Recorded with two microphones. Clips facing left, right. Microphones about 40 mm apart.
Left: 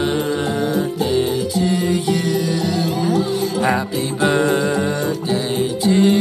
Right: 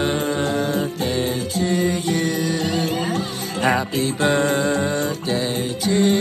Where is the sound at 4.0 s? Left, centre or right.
Centre.